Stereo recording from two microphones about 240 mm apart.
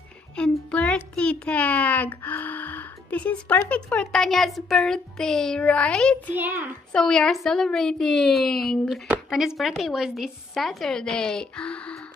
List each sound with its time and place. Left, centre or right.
0.4 s a child's voice: centre
6.3 s a child's voice: centre
6.9 s speech: centre